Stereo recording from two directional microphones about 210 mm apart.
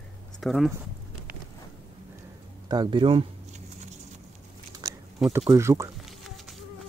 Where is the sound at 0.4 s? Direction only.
Centre (ahead or behind).